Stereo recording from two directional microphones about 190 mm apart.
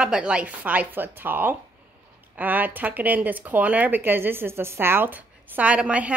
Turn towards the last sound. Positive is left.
turn(degrees=-5)  # may be behind; listen again after turning